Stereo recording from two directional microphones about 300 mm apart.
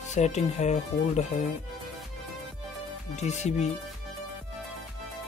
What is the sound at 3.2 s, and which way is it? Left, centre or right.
Speech, left.